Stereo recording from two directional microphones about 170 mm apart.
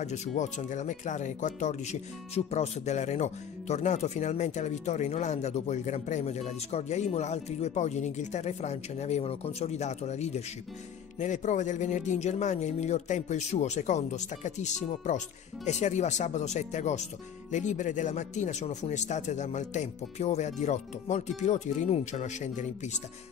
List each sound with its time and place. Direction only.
0.0 s speech: 40° left (ahead or behind)